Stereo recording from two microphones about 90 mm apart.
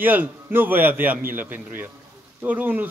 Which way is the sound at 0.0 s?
20° right (ahead or behind).